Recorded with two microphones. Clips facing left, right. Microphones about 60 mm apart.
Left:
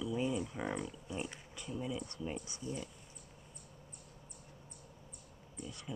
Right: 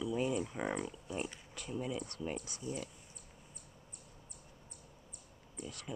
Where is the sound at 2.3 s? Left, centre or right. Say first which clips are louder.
Right 1 dB; centre.